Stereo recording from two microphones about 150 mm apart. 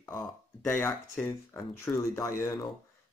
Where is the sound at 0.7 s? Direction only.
15° left (ahead or behind).